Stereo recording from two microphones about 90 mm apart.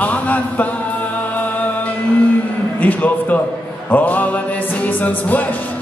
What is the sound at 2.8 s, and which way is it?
Speech, 15° left (ahead or behind).